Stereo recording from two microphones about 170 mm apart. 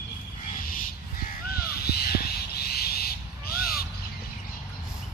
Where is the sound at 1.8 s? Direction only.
65° left (ahead or behind).